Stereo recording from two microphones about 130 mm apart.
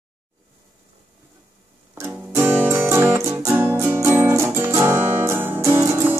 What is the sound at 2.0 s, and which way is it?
Music, 20° right (ahead or behind).